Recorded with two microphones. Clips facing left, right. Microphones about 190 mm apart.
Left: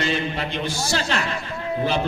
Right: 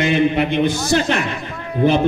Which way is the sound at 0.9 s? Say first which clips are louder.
Right 7 dB; 20° right (ahead or behind).